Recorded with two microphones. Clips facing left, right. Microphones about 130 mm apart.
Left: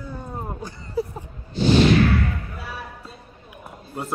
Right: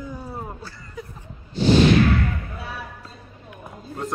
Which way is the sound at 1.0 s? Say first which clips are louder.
Left 12 dB; 35° left (ahead or behind).